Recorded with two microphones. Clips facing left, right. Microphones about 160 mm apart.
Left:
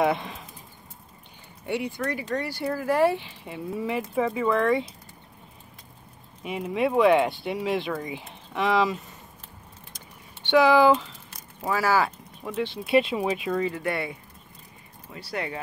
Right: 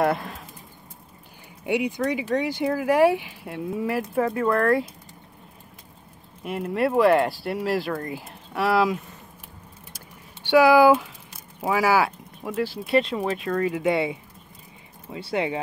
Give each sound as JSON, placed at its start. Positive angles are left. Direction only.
{"t": 0.0, "sound": "speech", "side_deg": 0}
{"t": 1.7, "sound": "speech", "side_deg": -15}
{"t": 3.4, "sound": "speech", "side_deg": 0}
{"t": 6.4, "sound": "speech", "side_deg": 0}
{"t": 9.9, "sound": "a sound", "side_deg": -10}
{"t": 13.2, "sound": "speech", "side_deg": 5}
{"t": 13.8, "sound": "speech", "side_deg": -20}